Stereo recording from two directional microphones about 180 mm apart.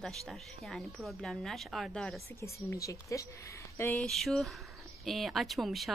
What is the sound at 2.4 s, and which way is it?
A woman's voice, 15° left (ahead or behind).